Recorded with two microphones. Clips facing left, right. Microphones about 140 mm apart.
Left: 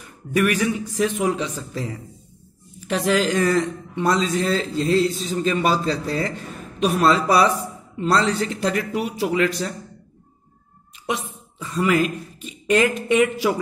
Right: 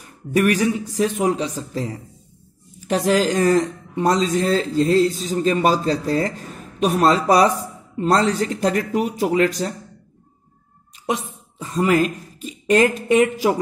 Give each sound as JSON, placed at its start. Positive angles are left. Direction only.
{"t": 0.0, "sound": "speech", "side_deg": -40}
{"t": 11.1, "sound": "speech", "side_deg": -40}